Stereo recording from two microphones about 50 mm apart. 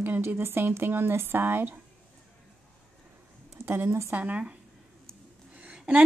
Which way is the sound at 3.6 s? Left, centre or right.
Right.